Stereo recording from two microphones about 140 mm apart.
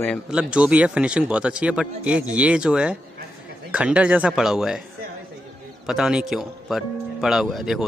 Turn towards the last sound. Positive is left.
turn(degrees=0)  # may be behind; listen again after turning